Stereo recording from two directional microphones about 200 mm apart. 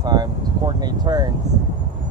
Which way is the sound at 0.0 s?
20° right (ahead or behind).